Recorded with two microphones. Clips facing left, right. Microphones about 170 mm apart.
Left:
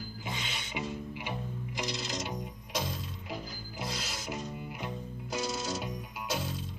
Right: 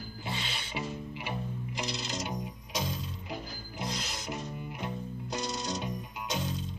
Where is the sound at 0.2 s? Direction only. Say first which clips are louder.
Right 2 dB; 15° left (ahead or behind).